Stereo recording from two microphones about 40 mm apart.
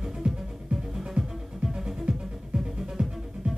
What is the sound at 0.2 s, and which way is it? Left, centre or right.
Music, centre.